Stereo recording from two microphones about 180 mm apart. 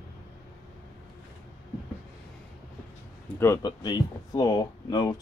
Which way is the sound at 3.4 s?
20° left (ahead or behind).